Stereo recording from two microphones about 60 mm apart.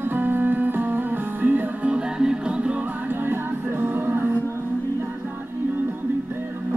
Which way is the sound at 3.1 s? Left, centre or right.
Right.